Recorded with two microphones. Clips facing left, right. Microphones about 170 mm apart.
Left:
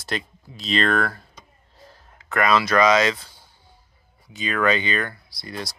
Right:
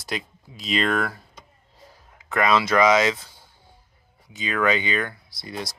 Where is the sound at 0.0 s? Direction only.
10° right (ahead or behind).